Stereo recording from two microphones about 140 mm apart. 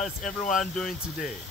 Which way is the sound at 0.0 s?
Centre (ahead or behind).